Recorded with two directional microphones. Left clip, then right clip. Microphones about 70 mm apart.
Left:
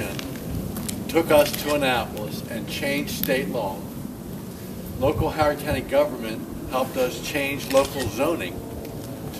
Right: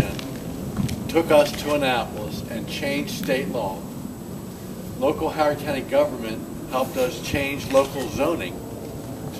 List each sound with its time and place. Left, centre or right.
1.1 s speech: centre
5.0 s speech: centre
7.8 s speech: left
8.2 s speech: centre